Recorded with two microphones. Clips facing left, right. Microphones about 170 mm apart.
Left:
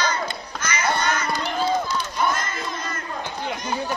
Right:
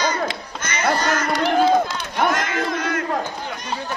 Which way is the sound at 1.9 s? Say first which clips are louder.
Right 3 dB; 80° right.